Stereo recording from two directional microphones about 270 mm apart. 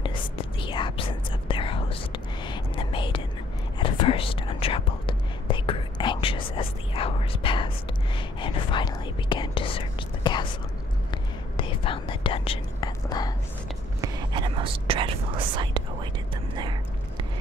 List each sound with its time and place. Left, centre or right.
0.0 s whispering: centre
14.0 s whispering: centre